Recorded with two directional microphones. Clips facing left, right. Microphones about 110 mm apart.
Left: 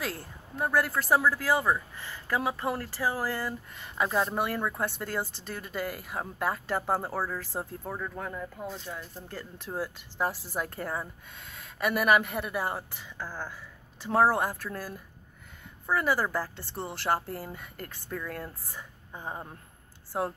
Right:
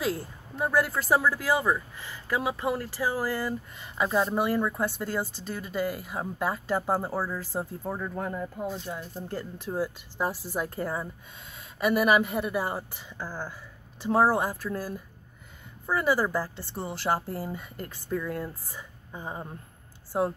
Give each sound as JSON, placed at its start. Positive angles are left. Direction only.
{"t": 0.0, "sound": "speech", "side_deg": -10}
{"t": 9.7, "sound": "speech", "side_deg": -5}